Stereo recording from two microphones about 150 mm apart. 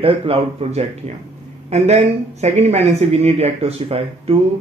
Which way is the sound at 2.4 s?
50° right (ahead or behind).